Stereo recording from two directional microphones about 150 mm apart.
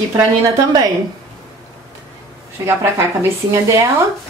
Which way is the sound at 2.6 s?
15° right (ahead or behind).